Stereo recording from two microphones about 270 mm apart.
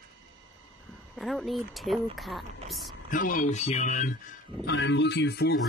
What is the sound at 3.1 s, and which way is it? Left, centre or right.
Speech, left.